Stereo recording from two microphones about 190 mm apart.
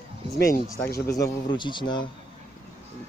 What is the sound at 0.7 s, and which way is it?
A man's voice, 15° left (ahead or behind).